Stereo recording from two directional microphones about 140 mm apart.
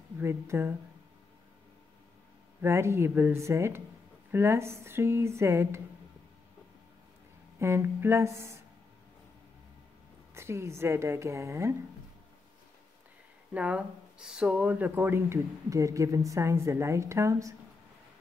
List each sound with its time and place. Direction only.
0.2 s speech: 15° right (ahead or behind)
2.6 s speech: 20° right (ahead or behind)
7.5 s speech: 20° right (ahead or behind)
10.3 s speech: 20° right (ahead or behind)
13.5 s speech: 10° right (ahead or behind)